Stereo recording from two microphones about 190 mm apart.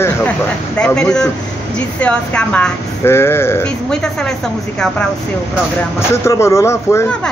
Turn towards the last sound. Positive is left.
turn(degrees=15)  # may be behind; listen again after turning